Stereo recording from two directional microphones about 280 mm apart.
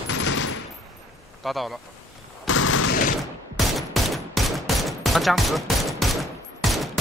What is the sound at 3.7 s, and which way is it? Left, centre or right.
Fusillade, centre.